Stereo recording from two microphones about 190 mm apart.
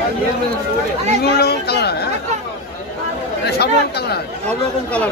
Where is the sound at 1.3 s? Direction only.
60° left (ahead or behind).